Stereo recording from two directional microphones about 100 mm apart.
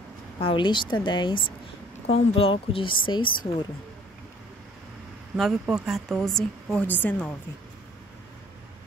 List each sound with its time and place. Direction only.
0.4 s speech: 60° left (ahead or behind)
2.0 s speech: 80° left; by 3.3 s 55° left (ahead or behind)
5.3 s speech: 5° right (ahead or behind)
6.8 s a woman's voice: 15° left (ahead or behind)